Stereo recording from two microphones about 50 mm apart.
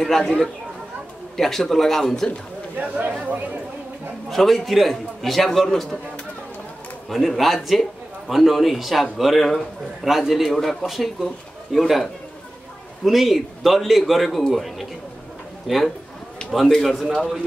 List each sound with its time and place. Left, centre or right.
0.0 s speech: centre
1.3 s speech: centre
2.8 s speech: right
4.3 s a man's voice: centre
7.1 s a man's voice: centre
13.0 s a man's voice: centre